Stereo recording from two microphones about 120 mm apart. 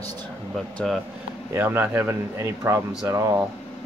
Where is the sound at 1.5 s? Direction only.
20° right (ahead or behind).